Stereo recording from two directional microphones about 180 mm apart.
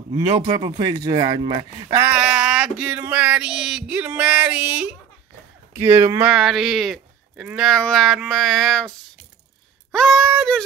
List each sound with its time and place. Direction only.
0.1 s speech: 20° right (ahead or behind)
2.0 s a sound: 5° right (ahead or behind)
5.7 s speech: 10° right (ahead or behind)
9.9 s speech: centre (ahead or behind)